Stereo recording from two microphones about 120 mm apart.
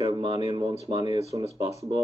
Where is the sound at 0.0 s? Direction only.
35° right (ahead or behind).